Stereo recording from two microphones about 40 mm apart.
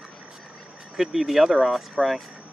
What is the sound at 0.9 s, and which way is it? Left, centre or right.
Speech, centre.